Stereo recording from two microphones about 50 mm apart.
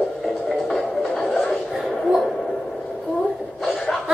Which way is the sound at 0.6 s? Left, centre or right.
Centre.